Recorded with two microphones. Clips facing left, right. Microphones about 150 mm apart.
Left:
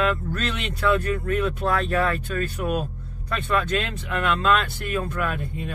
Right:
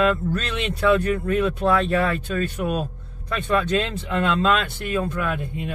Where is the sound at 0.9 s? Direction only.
25° right (ahead or behind).